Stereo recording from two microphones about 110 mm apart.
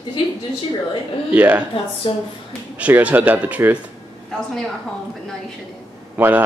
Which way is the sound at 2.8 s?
15° right (ahead or behind).